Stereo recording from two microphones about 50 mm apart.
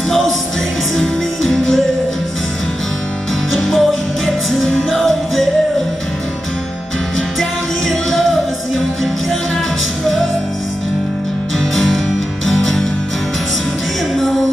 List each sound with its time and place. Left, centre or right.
0.9 s music: centre
3.5 s music: centre
7.9 s music: centre
11.7 s music: centre
14.1 s music: centre